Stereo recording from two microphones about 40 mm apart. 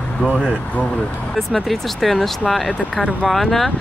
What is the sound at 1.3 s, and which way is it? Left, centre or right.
Speech, centre.